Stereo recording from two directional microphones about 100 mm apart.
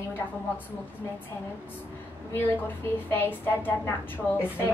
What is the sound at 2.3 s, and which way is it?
A woman's voice, 20° left (ahead or behind).